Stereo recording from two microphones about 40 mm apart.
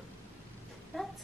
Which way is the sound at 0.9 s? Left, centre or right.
Centre.